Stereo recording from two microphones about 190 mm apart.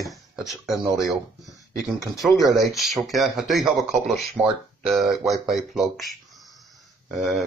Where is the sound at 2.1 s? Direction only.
Centre (ahead or behind).